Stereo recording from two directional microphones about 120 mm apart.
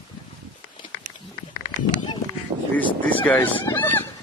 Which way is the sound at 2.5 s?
60° right (ahead or behind).